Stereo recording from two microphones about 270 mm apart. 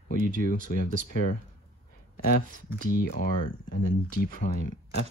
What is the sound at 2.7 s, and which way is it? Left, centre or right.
Speech, left.